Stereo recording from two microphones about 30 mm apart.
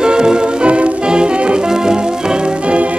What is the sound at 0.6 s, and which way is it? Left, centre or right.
Music, right.